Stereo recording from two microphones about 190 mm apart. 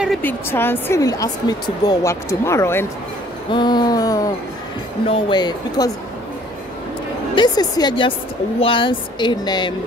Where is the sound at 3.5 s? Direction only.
25° left (ahead or behind).